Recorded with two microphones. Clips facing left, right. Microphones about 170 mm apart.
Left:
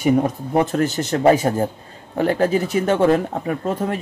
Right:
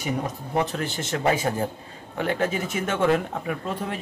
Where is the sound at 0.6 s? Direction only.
45° left (ahead or behind).